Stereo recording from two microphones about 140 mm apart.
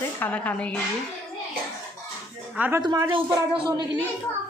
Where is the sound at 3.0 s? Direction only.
40° right (ahead or behind).